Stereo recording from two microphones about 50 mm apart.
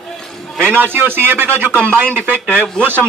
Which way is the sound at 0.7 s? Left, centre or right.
Right.